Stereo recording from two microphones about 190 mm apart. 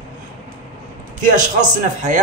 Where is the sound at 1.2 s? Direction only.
40° right (ahead or behind).